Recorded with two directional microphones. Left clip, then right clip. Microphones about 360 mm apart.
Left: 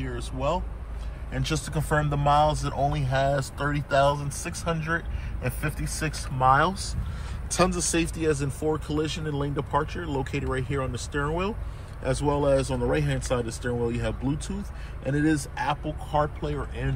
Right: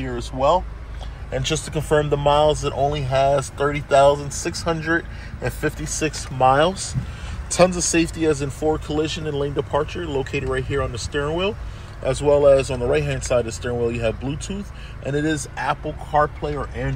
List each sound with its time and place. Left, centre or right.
1.3 s speech: centre